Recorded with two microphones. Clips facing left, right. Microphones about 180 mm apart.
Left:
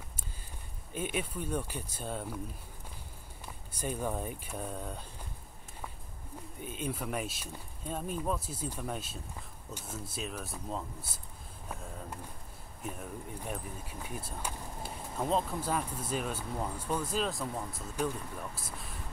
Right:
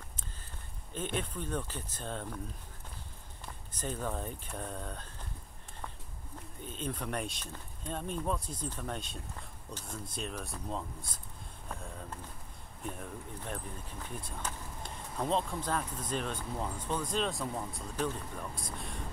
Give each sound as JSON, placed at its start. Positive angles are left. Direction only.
{"t": 0.9, "sound": "speech", "side_deg": 10}
{"t": 3.7, "sound": "speech", "side_deg": 10}
{"t": 6.6, "sound": "speech", "side_deg": 10}
{"t": 12.8, "sound": "speech", "side_deg": 5}